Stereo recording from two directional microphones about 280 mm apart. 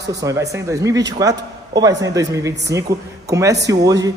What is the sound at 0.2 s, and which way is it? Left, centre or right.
A man's voice, centre.